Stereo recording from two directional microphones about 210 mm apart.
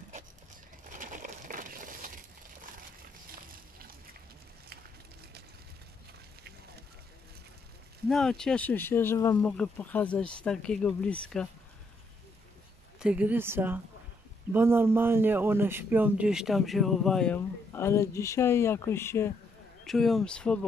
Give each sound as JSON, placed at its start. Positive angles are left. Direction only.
{"t": 0.8, "sound": "a sound", "side_deg": -40}
{"t": 8.1, "sound": "speech", "side_deg": 5}
{"t": 13.0, "sound": "speech", "side_deg": -5}
{"t": 19.8, "sound": "speech", "side_deg": 0}